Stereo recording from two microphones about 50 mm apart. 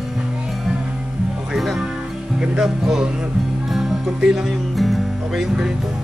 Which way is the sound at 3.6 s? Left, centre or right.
Centre.